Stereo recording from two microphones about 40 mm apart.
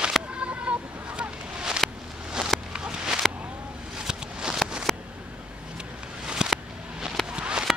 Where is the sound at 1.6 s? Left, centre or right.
Centre.